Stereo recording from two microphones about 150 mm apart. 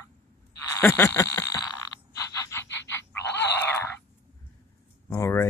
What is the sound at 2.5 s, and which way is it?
Frog, 15° left (ahead or behind).